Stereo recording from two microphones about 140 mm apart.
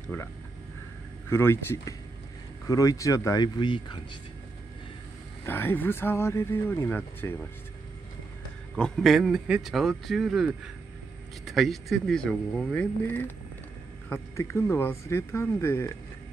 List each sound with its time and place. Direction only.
0.1 s speech: 20° left (ahead or behind)
1.3 s speech: 20° left (ahead or behind); by 4.0 s 35° left (ahead or behind)
5.4 s speech: 15° left (ahead or behind)
8.7 s speech: 5° left (ahead or behind)